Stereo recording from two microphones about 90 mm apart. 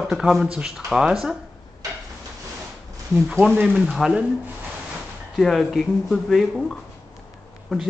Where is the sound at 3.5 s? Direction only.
15° right (ahead or behind).